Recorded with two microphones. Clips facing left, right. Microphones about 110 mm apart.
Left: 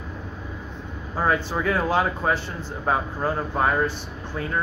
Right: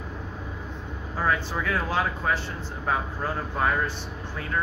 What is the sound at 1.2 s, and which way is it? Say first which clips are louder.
Speech: left 4 dB; 15° left (ahead or behind).